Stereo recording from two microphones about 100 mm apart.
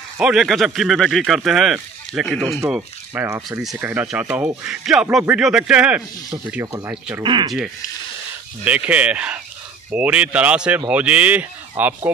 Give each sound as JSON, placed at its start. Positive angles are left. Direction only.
{"t": 0.2, "sound": "speech", "side_deg": -5}
{"t": 3.3, "sound": "speech", "side_deg": -35}
{"t": 3.8, "sound": "speech", "side_deg": -20}
{"t": 4.6, "sound": "speech", "side_deg": -5}
{"t": 6.6, "sound": "speech", "side_deg": -30}
{"t": 7.2, "sound": "speech", "side_deg": -50}
{"t": 8.6, "sound": "speech", "side_deg": -15}